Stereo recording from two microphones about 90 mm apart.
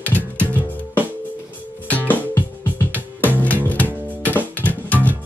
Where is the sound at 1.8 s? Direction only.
20° left (ahead or behind).